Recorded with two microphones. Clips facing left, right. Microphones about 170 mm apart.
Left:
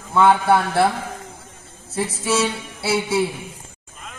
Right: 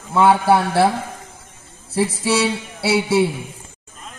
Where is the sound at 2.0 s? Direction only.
30° right (ahead or behind).